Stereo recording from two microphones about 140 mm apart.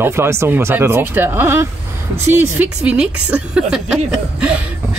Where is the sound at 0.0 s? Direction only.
15° right (ahead or behind).